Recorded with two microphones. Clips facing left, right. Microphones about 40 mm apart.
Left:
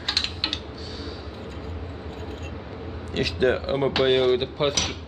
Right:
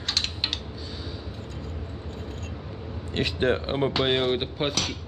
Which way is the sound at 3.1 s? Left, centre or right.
Right.